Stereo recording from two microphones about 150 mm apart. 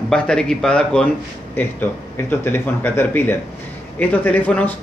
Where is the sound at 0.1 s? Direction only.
5° left (ahead or behind).